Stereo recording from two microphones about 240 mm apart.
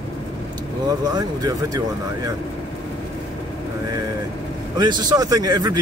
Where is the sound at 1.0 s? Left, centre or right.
Centre.